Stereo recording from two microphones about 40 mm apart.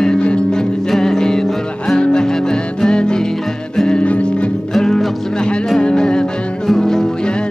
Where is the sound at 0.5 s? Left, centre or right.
Centre.